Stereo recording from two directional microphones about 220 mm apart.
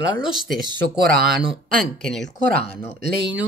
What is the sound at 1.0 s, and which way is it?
Speech, 45° right (ahead or behind).